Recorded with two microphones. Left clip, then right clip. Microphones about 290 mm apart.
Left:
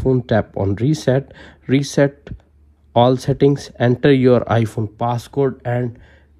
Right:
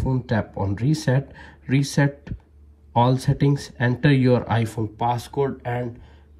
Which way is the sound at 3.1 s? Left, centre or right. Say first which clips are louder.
Left 8 dB; left.